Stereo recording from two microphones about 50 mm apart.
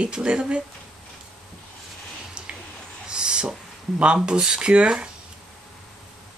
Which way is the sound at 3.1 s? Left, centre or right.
Centre.